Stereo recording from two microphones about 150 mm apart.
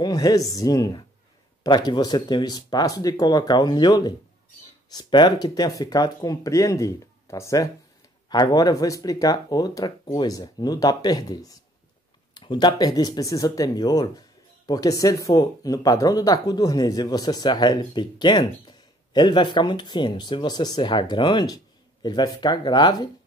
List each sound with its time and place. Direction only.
0.0 s speech: 25° left (ahead or behind)